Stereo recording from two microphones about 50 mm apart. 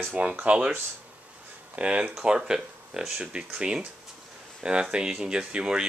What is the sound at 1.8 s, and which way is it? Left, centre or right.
Speech, right.